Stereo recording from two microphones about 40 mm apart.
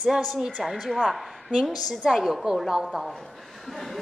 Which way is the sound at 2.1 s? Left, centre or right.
Centre.